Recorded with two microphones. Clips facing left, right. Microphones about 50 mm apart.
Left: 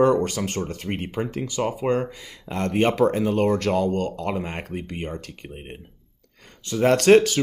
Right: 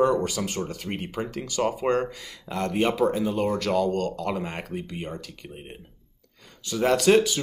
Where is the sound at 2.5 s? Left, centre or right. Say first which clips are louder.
Left 3 dB; left.